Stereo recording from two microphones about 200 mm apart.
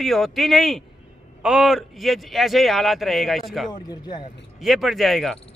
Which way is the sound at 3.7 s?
20° left (ahead or behind).